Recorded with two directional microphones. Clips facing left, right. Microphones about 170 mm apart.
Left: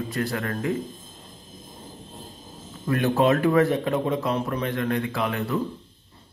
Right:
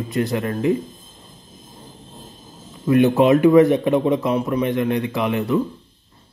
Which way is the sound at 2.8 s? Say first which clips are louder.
Right 6 dB; 20° right (ahead or behind).